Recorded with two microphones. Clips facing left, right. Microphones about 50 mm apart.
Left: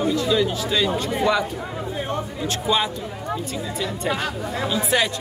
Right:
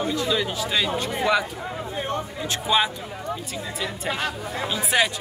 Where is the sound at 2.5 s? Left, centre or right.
Centre.